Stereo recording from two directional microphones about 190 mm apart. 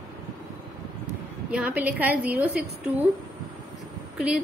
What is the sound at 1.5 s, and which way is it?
A woman's voice, 10° right (ahead or behind).